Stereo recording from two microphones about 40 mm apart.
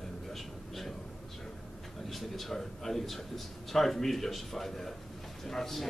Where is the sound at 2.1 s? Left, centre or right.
Centre.